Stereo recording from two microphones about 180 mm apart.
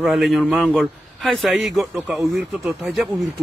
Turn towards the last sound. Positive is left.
turn(degrees=0)  # may be behind; listen again after turning